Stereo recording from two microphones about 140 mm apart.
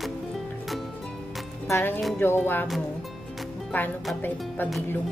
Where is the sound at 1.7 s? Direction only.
15° left (ahead or behind).